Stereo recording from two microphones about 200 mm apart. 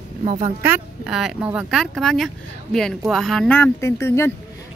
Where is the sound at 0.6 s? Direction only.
5° right (ahead or behind).